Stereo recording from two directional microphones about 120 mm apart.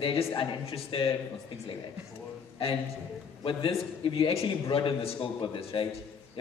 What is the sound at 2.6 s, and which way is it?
A man's voice, 55° left (ahead or behind).